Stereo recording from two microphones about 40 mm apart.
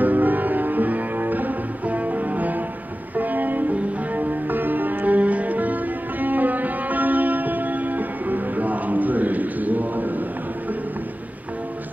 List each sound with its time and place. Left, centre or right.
0.0 s music: right